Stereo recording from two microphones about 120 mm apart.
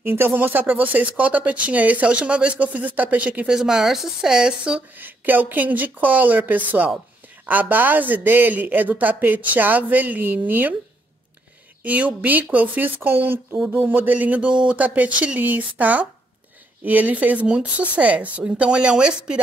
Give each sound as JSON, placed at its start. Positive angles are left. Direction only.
{"t": 0.0, "sound": "speech", "side_deg": -20}
{"t": 11.8, "sound": "speech", "side_deg": -15}